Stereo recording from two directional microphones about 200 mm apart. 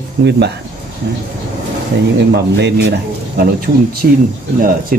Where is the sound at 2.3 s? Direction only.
55° right (ahead or behind).